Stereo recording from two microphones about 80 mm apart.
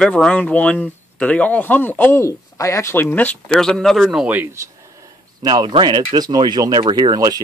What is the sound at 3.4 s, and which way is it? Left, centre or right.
Speech, centre.